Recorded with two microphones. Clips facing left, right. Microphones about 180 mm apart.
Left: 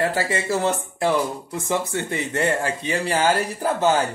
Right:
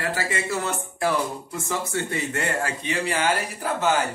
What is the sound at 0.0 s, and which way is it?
Speech, 30° left (ahead or behind).